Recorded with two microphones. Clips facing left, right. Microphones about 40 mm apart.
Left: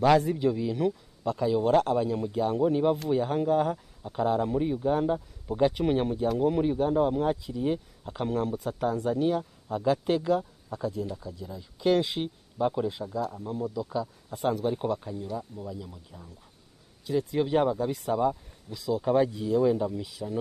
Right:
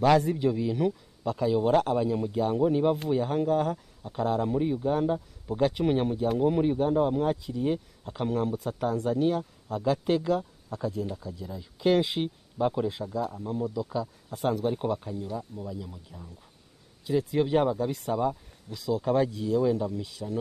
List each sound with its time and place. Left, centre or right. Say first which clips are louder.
0.0 s speech: even; centre